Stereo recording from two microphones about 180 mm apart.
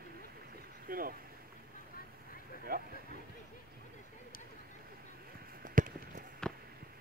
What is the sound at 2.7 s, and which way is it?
Speech, 55° right (ahead or behind).